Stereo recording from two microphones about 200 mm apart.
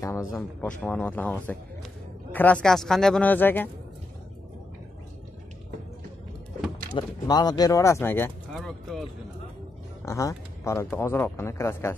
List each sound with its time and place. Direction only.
0.3 s speech: 10° left (ahead or behind)
6.9 s speech: 20° left (ahead or behind)
8.5 s a sound: centre (ahead or behind)
10.0 s speech: 15° left (ahead or behind)